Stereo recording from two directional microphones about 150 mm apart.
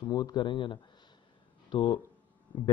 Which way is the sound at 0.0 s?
25° left (ahead or behind).